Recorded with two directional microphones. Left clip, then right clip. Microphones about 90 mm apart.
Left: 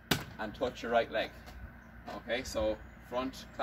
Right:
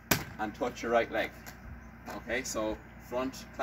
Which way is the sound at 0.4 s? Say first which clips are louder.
Right 2 dB; 5° left (ahead or behind).